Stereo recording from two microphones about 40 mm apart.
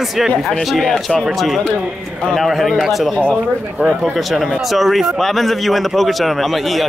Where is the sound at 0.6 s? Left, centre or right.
Centre.